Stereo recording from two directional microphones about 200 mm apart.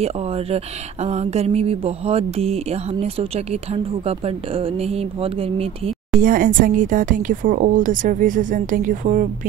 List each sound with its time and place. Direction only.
0.0 s speech: 30° right (ahead or behind)
6.2 s speech: 45° right (ahead or behind)